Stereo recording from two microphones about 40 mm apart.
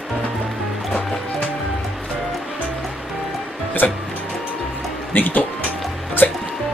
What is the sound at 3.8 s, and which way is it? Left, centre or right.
Music, left.